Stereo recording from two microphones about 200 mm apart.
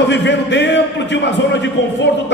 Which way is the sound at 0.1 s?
60° left (ahead or behind).